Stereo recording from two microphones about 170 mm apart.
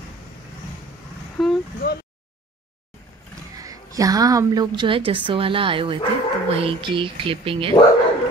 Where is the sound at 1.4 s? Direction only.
Centre (ahead or behind).